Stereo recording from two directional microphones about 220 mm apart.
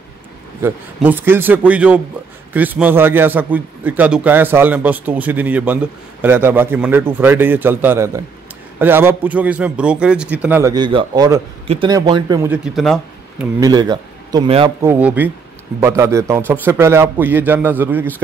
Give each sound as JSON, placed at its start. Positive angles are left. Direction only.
{"t": 0.6, "sound": "a man's voice", "side_deg": -10}
{"t": 12.4, "sound": "speech", "side_deg": 0}
{"t": 13.6, "sound": "a man's voice", "side_deg": -20}
{"t": 14.9, "sound": "a man's voice", "side_deg": -5}